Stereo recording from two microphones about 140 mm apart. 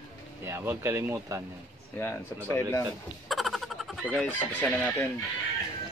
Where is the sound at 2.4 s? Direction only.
20° left (ahead or behind).